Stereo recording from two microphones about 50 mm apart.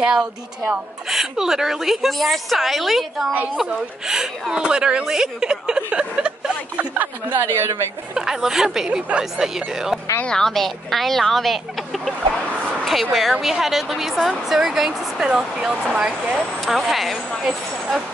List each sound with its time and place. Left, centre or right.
0.0 s a woman's voice: centre
6.9 s speech: right
7.5 s a woman's voice: right
8.1 s speech: centre
10.2 s speech: centre
10.5 s a woman's voice: centre
15.9 s speech: right
16.6 s a woman's voice: centre